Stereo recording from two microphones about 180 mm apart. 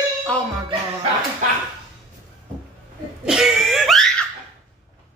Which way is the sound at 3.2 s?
Centre (ahead or behind).